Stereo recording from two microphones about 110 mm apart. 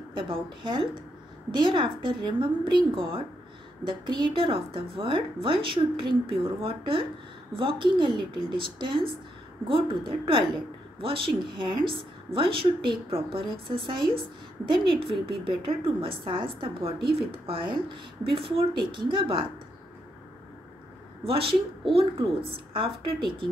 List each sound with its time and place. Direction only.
0.1 s a woman's voice: 50° right (ahead or behind)
21.3 s a woman's voice: 55° right (ahead or behind)
22.7 s a woman's voice: 50° right (ahead or behind)